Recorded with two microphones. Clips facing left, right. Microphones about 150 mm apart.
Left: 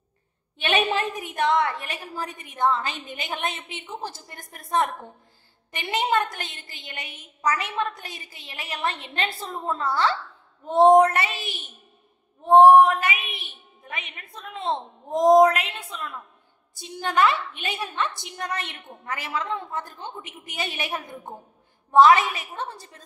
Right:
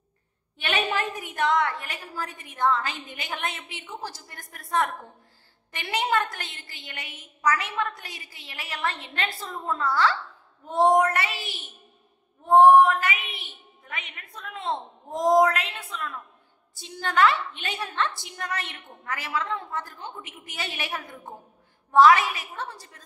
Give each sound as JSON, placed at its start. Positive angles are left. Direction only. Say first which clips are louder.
{"t": 0.6, "sound": "a woman's voice", "louder": "left 4 dB", "side_deg": 20}